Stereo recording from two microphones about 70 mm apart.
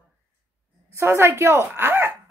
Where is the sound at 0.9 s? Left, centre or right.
Right.